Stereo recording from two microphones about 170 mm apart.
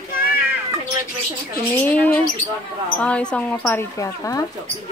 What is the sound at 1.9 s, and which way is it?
Speech, 10° left (ahead or behind).